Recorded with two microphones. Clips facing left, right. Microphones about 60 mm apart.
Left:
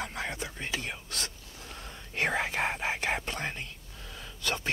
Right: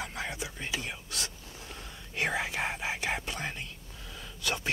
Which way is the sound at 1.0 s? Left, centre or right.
Left.